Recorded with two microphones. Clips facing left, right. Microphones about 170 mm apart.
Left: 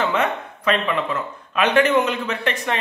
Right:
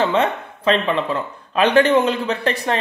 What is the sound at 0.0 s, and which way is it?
Speech, 30° right (ahead or behind).